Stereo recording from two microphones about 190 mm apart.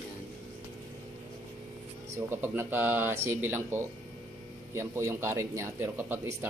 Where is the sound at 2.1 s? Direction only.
10° right (ahead or behind).